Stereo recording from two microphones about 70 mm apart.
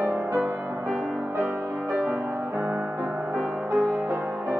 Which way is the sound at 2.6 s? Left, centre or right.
Centre.